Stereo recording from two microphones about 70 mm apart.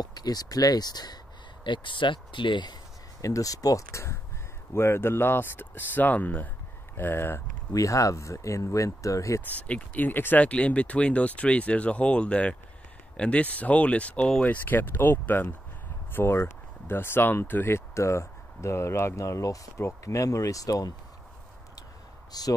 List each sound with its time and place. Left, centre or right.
0.0 s speech: left
2.0 s speech: left
2.6 s a sound: left
3.3 s speech: left
7.7 s speech: left
9.6 s speech: centre; by 20.9 s left
22.3 s speech: left